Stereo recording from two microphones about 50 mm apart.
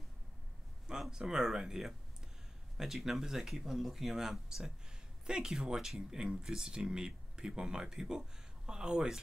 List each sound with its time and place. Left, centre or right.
1.1 s speech: centre